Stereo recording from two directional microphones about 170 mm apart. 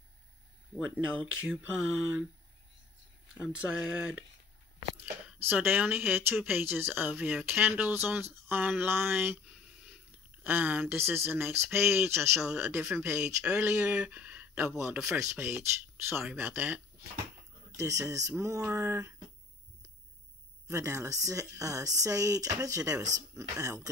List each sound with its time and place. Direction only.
0.7 s speech: 5° right (ahead or behind)
3.3 s speech: 5° right (ahead or behind)
5.5 s speech: 10° right (ahead or behind)
10.4 s speech: 10° right (ahead or behind)
20.6 s speech: 15° right (ahead or behind)